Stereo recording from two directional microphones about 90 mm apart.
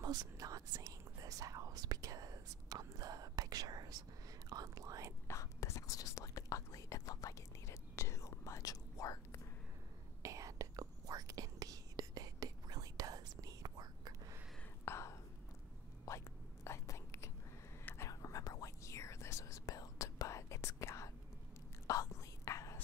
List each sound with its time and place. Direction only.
0.0 s speech: 45° right (ahead or behind)
5.3 s whispering: 35° left (ahead or behind)
10.2 s whispering: 35° right (ahead or behind)
14.9 s whispering: 30° left (ahead or behind)